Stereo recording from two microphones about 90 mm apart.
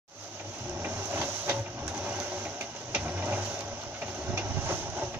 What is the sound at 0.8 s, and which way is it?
Vehicle, 20° right (ahead or behind).